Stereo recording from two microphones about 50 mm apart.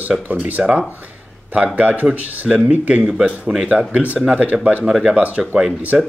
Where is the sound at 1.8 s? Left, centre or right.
Right.